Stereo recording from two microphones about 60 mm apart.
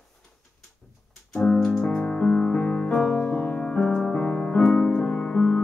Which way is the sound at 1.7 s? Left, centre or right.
Centre.